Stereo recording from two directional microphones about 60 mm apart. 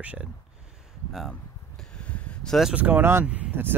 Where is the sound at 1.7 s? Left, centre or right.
Centre.